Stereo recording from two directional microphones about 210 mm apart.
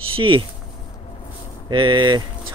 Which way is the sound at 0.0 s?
80° right.